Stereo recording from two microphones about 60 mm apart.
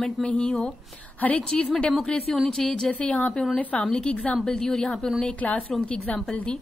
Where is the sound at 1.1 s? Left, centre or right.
Left.